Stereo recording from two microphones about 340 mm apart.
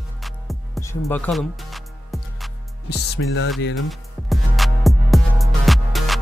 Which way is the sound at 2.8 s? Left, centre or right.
Left.